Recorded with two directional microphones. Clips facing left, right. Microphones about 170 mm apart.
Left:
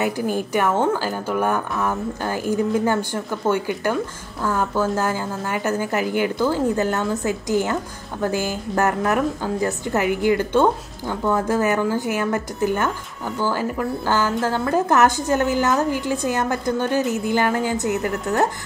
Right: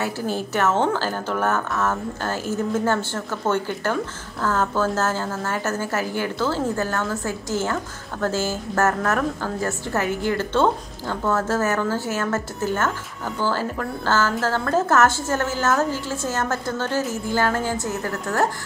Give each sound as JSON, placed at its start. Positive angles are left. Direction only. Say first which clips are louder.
{"t": 0.0, "sound": "a woman's voice", "louder": "left 3 dB", "side_deg": 15}